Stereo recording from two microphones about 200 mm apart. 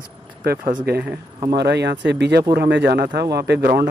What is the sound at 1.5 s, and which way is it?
Speech, 55° right (ahead or behind).